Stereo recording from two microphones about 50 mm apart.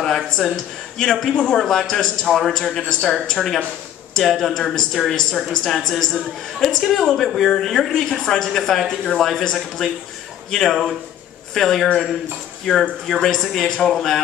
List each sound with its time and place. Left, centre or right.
0.0 s speech: centre
1.3 s a man's voice: left
1.6 s speech: centre